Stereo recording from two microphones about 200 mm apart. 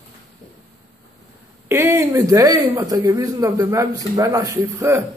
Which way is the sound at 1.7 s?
10° right (ahead or behind).